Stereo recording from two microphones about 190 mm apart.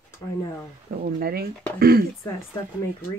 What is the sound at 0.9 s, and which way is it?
Speech, 50° right (ahead or behind).